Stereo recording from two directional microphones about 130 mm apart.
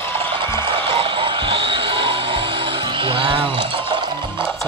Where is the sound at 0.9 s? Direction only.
40° right (ahead or behind).